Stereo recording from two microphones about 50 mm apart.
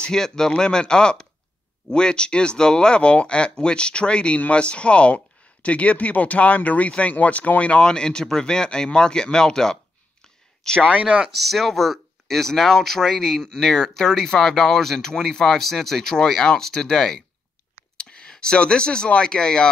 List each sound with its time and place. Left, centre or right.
0.0 s speech: centre; by 7.8 s left
7.8 s speech: centre